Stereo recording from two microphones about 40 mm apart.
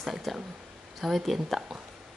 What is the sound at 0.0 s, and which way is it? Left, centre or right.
Speech, centre.